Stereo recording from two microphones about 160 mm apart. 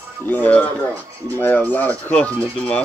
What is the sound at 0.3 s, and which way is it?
Speech, 10° left (ahead or behind).